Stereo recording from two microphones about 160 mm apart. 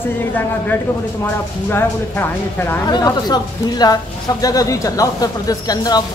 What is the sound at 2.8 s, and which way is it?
Speech, 25° left (ahead or behind).